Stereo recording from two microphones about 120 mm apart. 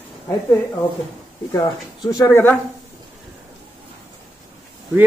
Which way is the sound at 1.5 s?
30° left (ahead or behind).